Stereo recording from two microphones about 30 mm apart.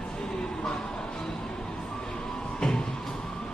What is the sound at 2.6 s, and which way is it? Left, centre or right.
Music, left.